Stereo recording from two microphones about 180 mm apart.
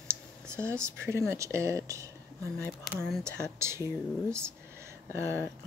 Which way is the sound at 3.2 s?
15° right (ahead or behind).